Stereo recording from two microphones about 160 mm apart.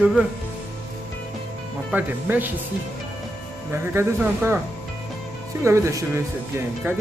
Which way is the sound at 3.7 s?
15° right (ahead or behind).